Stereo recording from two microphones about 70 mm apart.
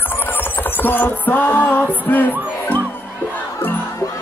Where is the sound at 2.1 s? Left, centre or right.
Left.